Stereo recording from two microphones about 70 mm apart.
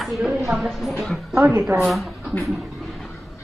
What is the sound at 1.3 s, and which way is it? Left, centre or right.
Speech, right.